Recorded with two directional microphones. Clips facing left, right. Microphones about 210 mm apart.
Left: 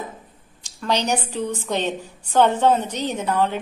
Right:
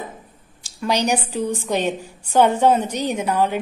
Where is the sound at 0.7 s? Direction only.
10° right (ahead or behind).